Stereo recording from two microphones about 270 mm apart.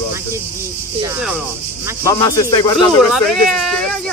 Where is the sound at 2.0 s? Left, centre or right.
Centre.